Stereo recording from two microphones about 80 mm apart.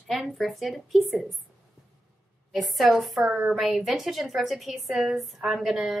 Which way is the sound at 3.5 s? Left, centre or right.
Centre.